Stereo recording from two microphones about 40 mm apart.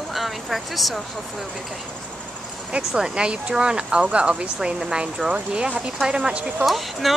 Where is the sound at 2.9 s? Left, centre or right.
Centre.